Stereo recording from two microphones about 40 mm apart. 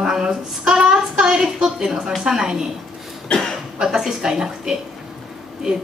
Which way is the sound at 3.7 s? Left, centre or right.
Centre.